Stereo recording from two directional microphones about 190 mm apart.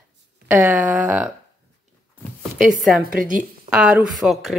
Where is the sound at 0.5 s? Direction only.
10° right (ahead or behind).